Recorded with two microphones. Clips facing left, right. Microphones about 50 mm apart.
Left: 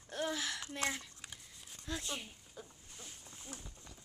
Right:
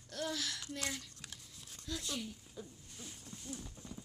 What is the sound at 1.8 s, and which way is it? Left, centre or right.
Speech, left.